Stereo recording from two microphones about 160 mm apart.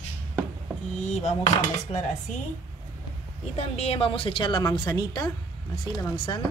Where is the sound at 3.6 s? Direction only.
40° left (ahead or behind); by 5.2 s 25° left (ahead or behind).